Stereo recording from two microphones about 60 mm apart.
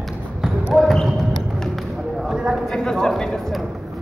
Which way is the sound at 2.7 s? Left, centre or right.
Centre.